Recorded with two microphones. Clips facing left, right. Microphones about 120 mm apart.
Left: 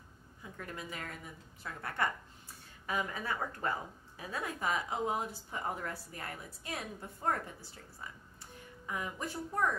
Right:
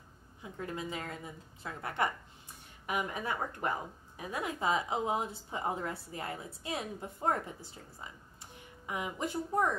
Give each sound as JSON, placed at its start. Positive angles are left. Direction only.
{"t": 0.4, "sound": "a woman's voice", "side_deg": -20}